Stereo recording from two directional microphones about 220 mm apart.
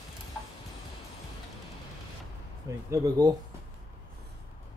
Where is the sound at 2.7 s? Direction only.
15° right (ahead or behind).